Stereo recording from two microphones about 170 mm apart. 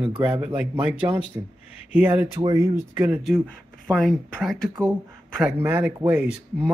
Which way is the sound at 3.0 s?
10° right (ahead or behind).